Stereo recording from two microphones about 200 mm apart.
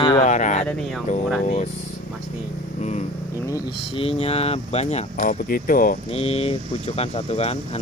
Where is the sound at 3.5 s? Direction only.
25° left (ahead or behind); by 6.0 s 45° left (ahead or behind).